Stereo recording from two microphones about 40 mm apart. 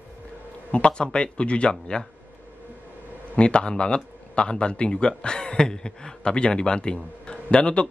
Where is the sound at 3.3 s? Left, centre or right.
Left.